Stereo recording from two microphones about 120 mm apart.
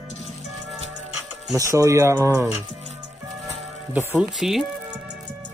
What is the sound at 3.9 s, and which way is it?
Speech, 5° right (ahead or behind).